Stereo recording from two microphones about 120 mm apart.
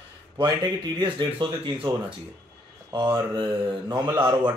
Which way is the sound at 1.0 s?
40° right (ahead or behind).